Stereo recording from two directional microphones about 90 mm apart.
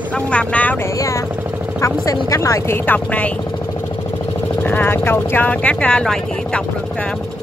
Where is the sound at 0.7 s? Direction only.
35° left (ahead or behind).